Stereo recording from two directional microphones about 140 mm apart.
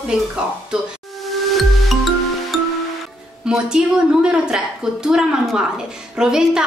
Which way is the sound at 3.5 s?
5° right (ahead or behind).